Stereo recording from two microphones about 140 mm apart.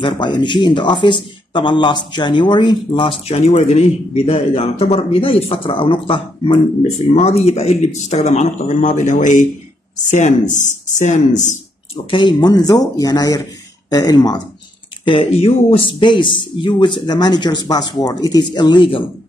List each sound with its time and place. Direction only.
0.0 s a man's voice: 35° left (ahead or behind); by 11.5 s 60° left (ahead or behind)
12.1 s speech: 35° left (ahead or behind)
15.0 s speech: 45° left (ahead or behind)